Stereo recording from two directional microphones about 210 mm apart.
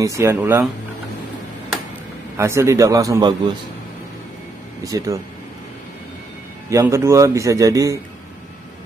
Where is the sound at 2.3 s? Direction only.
15° right (ahead or behind).